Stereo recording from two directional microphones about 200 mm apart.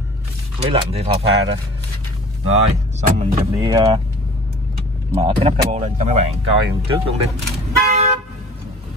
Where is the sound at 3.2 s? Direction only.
30° right (ahead or behind).